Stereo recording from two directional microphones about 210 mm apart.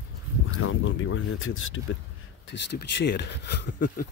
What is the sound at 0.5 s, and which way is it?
Speech, 75° left (ahead or behind).